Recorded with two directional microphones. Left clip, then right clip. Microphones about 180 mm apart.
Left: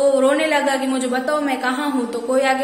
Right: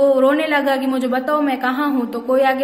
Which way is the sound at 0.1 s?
40° right (ahead or behind).